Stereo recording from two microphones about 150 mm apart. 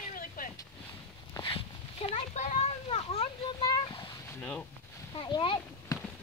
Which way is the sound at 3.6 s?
30° left (ahead or behind).